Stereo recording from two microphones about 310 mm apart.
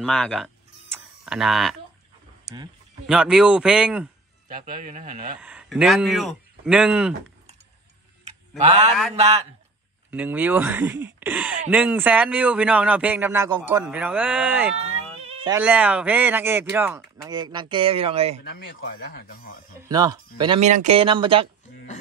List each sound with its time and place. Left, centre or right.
0.0 s speech: centre
0.9 s tick-tock: centre
3.1 s speech: centre
4.5 s speech: right
5.4 s speech: centre
8.5 s speech: right
10.1 s speech: centre
14.9 s speech: centre
18.5 s speech: left
19.9 s speech: centre